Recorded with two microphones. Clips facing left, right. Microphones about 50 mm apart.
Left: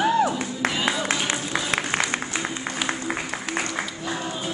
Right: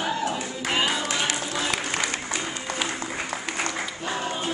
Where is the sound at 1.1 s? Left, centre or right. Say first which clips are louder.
Left 2 dB; left.